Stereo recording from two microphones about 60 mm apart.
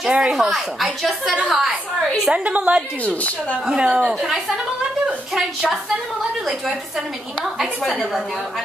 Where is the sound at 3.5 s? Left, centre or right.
Centre.